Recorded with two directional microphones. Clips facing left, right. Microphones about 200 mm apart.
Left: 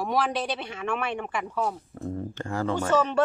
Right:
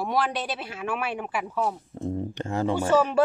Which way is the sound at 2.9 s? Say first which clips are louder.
Right 2 dB; 10° right (ahead or behind).